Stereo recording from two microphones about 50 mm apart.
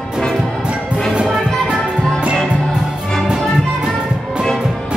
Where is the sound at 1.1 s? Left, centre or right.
Centre.